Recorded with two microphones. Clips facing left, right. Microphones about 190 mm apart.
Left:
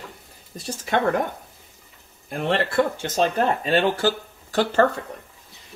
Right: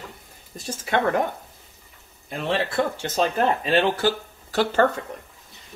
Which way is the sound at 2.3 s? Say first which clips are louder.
Left 2 dB; 55° left (ahead or behind).